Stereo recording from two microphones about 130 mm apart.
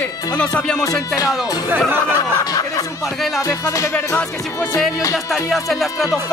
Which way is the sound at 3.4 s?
25° left (ahead or behind).